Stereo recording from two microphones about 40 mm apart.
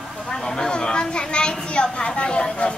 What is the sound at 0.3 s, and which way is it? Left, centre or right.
A woman's voice, centre.